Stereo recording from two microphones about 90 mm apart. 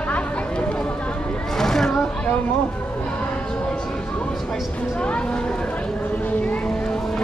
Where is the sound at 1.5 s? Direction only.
5° left (ahead or behind).